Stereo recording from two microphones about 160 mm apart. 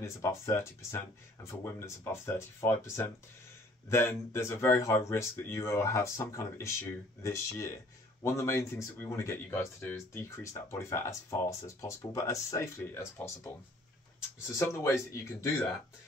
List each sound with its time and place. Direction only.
0.0 s speech: 15° left (ahead or behind)